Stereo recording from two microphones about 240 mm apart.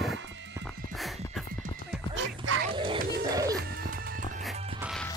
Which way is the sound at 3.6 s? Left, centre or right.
Right.